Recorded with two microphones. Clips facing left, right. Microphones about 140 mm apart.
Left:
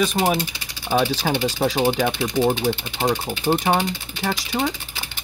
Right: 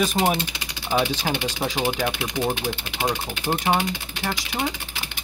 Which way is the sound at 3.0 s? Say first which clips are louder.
Left 4 dB; 15° left (ahead or behind).